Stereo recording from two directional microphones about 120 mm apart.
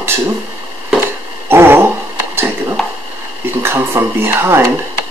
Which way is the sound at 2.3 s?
20° right (ahead or behind).